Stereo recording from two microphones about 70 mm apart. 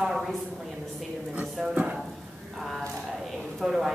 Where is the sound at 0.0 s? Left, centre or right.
Centre.